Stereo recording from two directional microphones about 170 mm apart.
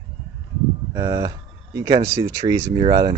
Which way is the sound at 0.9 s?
20° right (ahead or behind).